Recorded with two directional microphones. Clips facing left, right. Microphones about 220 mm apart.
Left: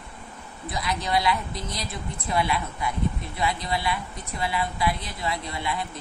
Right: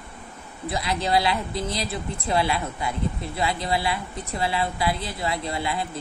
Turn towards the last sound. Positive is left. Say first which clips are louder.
# right 3 dB
turn(degrees=-25)  # may be behind; listen again after turning